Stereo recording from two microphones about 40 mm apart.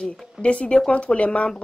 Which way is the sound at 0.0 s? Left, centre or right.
Left.